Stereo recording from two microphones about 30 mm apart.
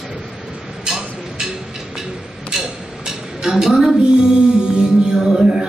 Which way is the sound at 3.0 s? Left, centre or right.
Centre.